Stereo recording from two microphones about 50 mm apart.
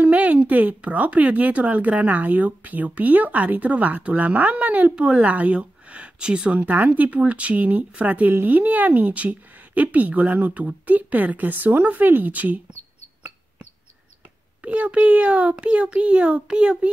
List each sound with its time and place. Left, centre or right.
0.0 s speech: right
6.6 s speech: right
14.6 s a child's voice: right